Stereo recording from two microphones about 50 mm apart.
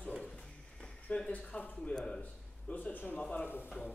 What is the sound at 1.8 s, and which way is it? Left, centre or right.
Speech, centre.